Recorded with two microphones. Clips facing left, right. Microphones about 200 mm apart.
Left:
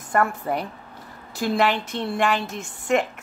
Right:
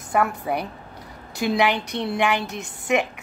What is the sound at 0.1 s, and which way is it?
Speech, 5° right (ahead or behind).